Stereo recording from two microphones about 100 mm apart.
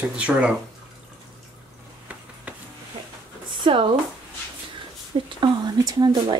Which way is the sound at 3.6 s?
60° right (ahead or behind).